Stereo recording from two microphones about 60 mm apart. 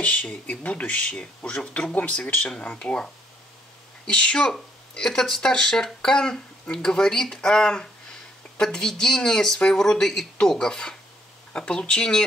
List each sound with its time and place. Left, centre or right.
0.0 s speech: left
4.1 s speech: centre